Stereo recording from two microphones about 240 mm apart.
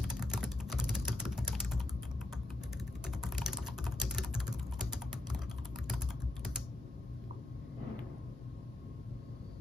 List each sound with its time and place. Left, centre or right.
0.0 s typing: centre
3.1 s typing: centre